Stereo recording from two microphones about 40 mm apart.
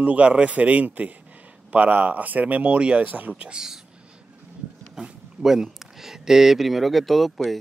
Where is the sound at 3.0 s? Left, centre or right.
Right.